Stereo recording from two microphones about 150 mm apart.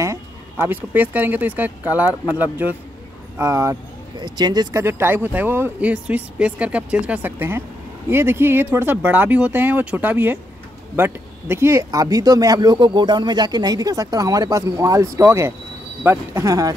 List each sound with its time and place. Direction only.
0.0 s speech: 20° right (ahead or behind)
4.8 s speech: 15° right (ahead or behind)